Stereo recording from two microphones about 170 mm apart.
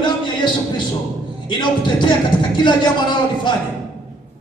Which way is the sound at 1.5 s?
25° left (ahead or behind).